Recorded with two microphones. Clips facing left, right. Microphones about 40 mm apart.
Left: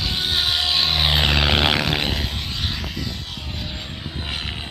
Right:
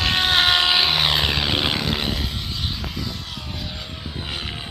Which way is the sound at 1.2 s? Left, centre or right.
Left.